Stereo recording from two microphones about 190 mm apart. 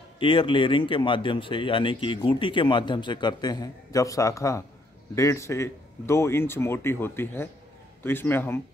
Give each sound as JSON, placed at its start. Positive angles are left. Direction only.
{"t": 0.2, "sound": "speech", "side_deg": 25}